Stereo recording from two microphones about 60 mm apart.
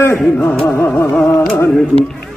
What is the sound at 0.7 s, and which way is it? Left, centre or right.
Mantra, left.